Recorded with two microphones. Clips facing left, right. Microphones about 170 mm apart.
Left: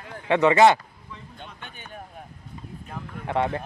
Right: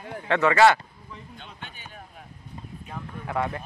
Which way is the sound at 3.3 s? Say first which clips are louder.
Left 4 dB; 30° left (ahead or behind).